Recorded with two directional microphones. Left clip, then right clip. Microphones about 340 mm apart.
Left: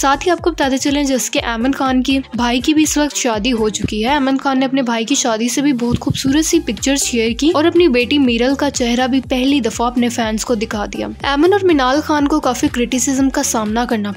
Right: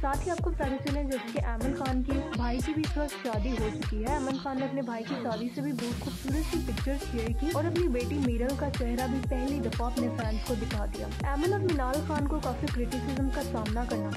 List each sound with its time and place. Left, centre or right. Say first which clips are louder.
0.0 s speech: left 17 dB; right
3.0 s speech: left 17 dB; right
7.5 s speech: left 17 dB; right
11.3 s speech: left 17 dB; right